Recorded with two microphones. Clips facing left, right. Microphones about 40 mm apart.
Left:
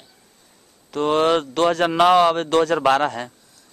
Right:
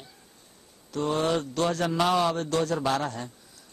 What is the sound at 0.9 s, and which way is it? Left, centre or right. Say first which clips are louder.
A man's voice: left 8 dB; left.